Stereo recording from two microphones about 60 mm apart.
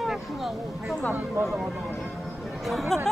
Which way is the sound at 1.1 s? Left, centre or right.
Right.